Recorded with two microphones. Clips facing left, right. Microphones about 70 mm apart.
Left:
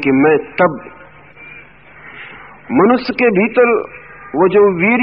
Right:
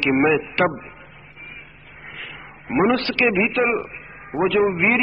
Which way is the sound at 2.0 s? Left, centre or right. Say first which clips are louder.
Left 3 dB; left.